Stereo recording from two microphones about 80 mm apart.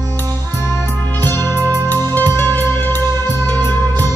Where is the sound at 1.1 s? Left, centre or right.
Left.